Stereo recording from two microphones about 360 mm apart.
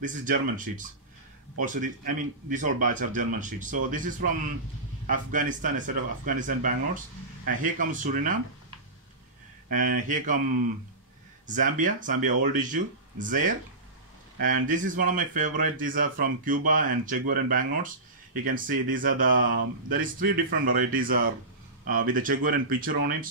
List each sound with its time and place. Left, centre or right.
0.0 s speech: right
11.4 s speech: right